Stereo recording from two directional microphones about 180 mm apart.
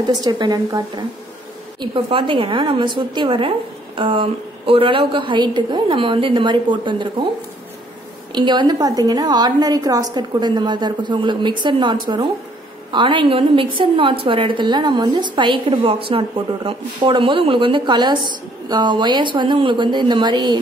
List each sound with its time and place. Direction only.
0.1 s a woman's voice: 25° right (ahead or behind)
8.3 s a woman's voice: 25° right (ahead or behind)